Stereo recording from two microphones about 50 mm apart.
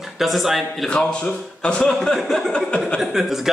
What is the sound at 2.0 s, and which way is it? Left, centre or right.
A man's voice, centre.